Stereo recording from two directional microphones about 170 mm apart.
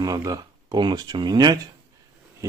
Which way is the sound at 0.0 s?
20° right (ahead or behind).